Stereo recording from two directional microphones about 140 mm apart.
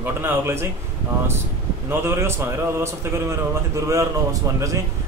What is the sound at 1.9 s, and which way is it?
A man's voice, 15° right (ahead or behind).